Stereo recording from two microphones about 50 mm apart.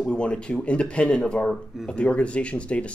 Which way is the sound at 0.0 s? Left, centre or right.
Centre.